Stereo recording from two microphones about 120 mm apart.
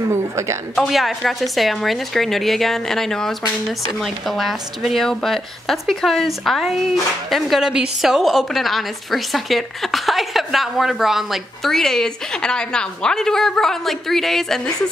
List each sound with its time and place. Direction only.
0.1 s a woman's voice: 25° right (ahead or behind)
0.7 s a woman's voice: centre (ahead or behind)